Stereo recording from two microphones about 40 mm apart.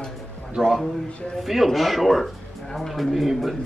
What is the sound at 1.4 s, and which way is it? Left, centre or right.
Speech, centre.